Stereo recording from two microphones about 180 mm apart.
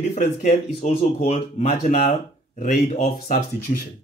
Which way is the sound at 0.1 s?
45° left (ahead or behind).